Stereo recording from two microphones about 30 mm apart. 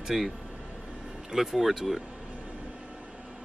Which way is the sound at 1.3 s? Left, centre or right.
Centre.